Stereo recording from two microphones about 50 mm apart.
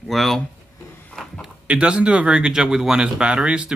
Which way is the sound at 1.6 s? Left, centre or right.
Right.